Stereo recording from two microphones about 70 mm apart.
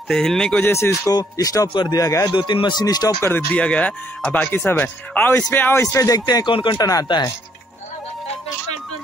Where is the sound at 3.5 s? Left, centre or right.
Centre; by 5.8 s left.